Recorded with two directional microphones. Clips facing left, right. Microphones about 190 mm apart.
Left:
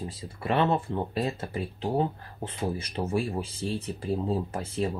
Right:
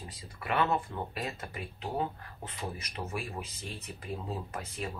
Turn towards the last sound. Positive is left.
turn(degrees=30)  # may be behind; listen again after turning